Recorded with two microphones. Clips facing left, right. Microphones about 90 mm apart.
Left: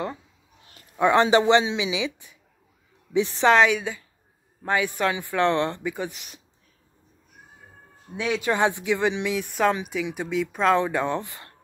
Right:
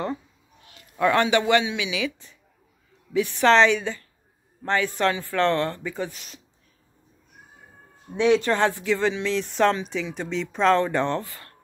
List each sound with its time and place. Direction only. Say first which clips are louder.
0.9 s a woman's voice: left 2 dB; 20° left (ahead or behind)
3.4 s speech: right 1 dB; 5° left (ahead or behind)
8.1 s speech: right 5 dB; 5° left (ahead or behind)
11.1 s speech: right 1 dB; 20° left (ahead or behind)